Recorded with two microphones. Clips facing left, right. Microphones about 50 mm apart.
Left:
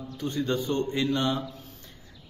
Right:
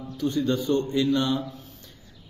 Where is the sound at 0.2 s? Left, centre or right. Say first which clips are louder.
Right 4 dB; left.